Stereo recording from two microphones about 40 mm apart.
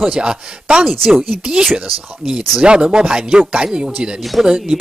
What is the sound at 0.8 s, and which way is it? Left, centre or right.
Speech, centre.